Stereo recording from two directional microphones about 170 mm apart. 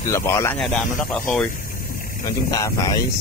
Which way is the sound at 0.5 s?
5° left (ahead or behind).